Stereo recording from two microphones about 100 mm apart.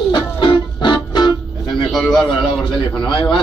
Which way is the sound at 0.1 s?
50° left (ahead or behind).